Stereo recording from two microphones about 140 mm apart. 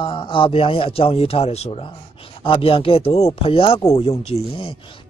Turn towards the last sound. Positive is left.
turn(degrees=45)  # may be behind; listen again after turning